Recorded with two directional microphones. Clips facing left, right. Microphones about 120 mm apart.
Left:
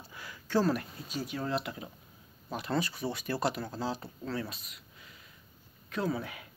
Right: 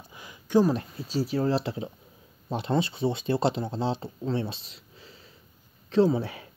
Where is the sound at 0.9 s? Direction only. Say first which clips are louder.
Right 9 dB; 30° right (ahead or behind).